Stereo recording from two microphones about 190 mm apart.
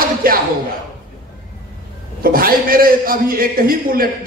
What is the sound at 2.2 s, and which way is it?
A man's voice, 50° right (ahead or behind).